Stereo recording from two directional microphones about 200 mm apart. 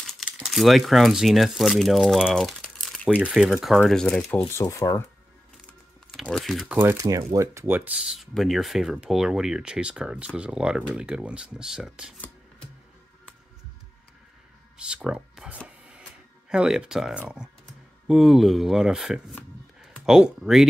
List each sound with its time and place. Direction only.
0.0 s speech: centre (ahead or behind)
4.6 s speech: 15° left (ahead or behind)
6.1 s speech: centre (ahead or behind)
6.8 s speech: 15° right (ahead or behind)
14.8 s speech: 5° right (ahead or behind)
15.5 s a sound: 5° right (ahead or behind)
16.4 s speech: 5° right (ahead or behind)
19.3 s a sound: centre (ahead or behind)